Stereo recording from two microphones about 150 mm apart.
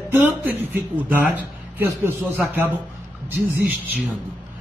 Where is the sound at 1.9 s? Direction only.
15° right (ahead or behind).